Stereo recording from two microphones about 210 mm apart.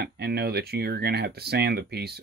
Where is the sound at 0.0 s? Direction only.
50° right (ahead or behind).